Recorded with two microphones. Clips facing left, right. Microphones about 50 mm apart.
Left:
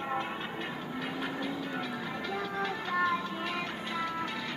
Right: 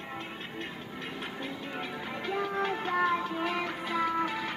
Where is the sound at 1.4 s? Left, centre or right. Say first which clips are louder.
Left 2 dB; right.